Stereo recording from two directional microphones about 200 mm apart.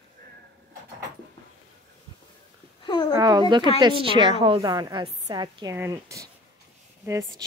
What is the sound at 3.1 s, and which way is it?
A woman's voice, 20° right (ahead or behind).